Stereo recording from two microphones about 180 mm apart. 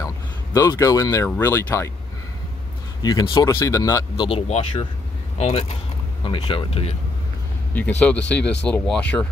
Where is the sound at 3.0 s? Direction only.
25° left (ahead or behind).